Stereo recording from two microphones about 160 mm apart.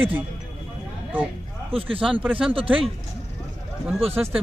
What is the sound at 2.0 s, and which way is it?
Speech, 10° right (ahead or behind).